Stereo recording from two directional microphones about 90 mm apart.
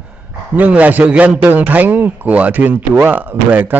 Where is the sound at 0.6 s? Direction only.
15° right (ahead or behind).